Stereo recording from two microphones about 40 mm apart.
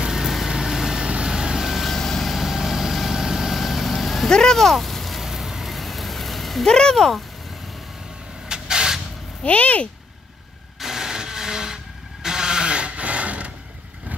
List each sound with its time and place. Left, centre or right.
0.0 s vehicle: centre
1.9 s vehicle: centre
2.2 s vehicle: centre
4.3 s speech: centre
5.2 s vehicle: centre
6.7 s speech: centre
8.5 s vehicle: centre
9.4 s speech: left
10.8 s a sound: centre; by 13.5 s right